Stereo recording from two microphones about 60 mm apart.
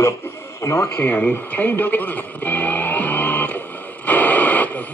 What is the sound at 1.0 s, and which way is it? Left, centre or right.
Radio, left.